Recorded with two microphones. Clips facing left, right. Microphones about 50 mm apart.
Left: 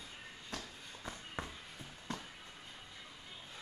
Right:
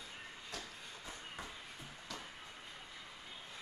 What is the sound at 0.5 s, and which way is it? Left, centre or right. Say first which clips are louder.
Walk: left 3 dB; left.